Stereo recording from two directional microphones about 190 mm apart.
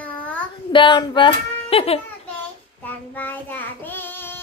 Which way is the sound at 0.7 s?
25° left (ahead or behind).